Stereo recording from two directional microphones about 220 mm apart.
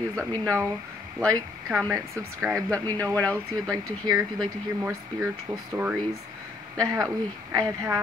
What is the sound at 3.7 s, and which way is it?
Speech, 15° right (ahead or behind).